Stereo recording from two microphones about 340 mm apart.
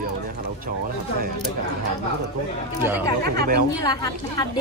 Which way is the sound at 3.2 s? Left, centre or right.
Right.